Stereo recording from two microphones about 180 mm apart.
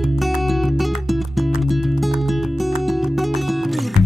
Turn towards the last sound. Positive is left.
turn(degrees=0)  # may be behind; listen again after turning